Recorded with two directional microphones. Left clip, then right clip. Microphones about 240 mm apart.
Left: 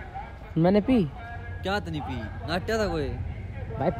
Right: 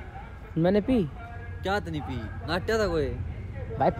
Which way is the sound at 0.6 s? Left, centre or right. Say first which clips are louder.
Left 2 dB; left.